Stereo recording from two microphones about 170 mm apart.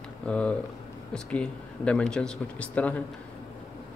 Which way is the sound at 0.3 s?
5° left (ahead or behind).